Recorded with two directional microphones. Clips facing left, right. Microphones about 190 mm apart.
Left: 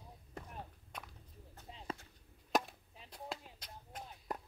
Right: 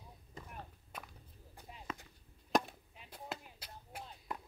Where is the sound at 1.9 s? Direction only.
35° left (ahead or behind).